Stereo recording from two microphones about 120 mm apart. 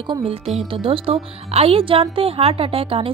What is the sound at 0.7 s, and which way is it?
A woman's voice, 50° right (ahead or behind).